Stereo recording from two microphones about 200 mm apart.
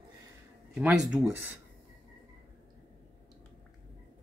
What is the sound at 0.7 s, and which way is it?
Speech, 5° right (ahead or behind).